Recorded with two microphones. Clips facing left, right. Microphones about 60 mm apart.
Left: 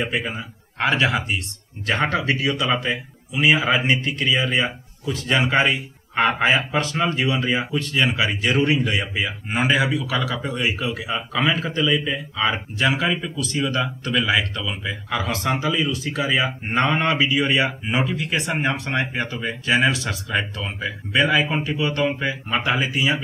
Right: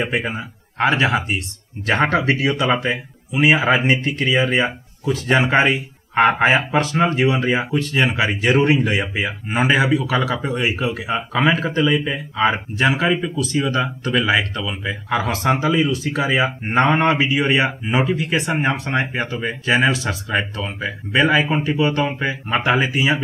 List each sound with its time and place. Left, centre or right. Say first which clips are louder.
0.0 s a man's voice: right 3 dB; right
0.3 s speech: right 3 dB; right
2.2 s a man's voice: right 3 dB; right